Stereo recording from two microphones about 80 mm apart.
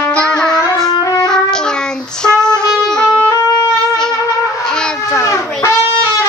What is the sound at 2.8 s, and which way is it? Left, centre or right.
Music, centre.